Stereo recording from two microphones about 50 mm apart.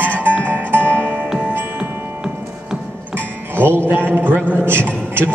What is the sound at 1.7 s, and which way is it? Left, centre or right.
Music, centre.